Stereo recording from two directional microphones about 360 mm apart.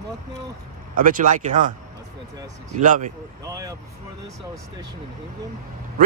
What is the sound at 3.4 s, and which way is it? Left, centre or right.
Speech, centre.